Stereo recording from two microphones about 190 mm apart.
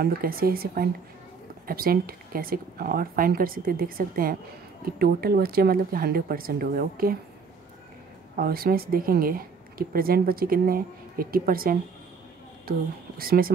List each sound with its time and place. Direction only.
0.0 s speech: 50° right (ahead or behind)
8.4 s speech: 50° right (ahead or behind)